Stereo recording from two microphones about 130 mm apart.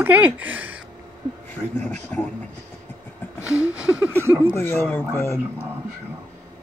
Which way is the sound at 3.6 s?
10° right (ahead or behind).